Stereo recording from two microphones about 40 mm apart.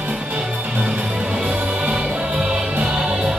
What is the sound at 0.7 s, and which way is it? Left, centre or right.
Music, right.